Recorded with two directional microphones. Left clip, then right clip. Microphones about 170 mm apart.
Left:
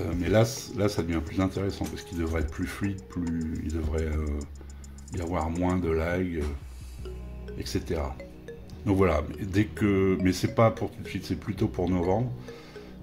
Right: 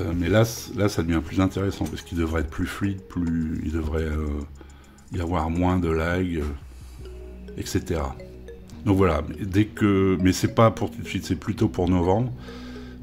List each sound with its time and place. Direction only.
0.0 s speech: 25° right (ahead or behind)
7.5 s speech: 35° right (ahead or behind)